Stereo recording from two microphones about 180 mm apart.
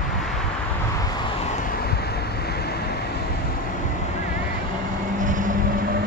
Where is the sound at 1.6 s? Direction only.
55° left (ahead or behind).